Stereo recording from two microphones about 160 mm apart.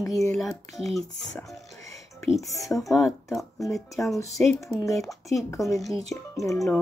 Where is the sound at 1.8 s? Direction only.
20° left (ahead or behind).